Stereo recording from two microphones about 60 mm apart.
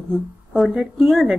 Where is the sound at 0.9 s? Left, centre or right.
Centre.